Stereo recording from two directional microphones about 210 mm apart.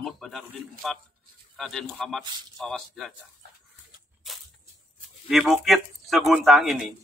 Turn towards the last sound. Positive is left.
turn(degrees=0)  # may be behind; listen again after turning